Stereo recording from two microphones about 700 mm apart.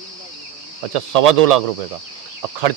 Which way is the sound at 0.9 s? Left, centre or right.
Right.